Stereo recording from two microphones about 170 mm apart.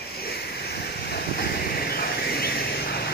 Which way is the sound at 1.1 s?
65° left (ahead or behind).